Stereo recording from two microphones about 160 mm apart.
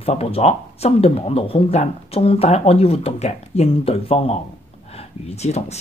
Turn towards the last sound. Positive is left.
turn(degrees=40)  # may be behind; listen again after turning